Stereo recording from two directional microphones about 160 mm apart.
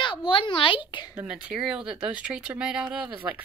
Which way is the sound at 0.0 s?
30° left (ahead or behind).